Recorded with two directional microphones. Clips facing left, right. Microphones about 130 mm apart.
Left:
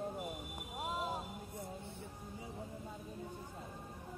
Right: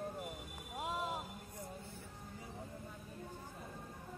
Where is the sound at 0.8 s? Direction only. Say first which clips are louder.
Left 1 dB; centre (ahead or behind).